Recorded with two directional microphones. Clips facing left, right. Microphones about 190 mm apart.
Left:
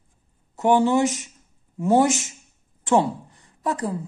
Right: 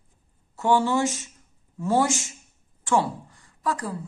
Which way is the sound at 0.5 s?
20° left (ahead or behind).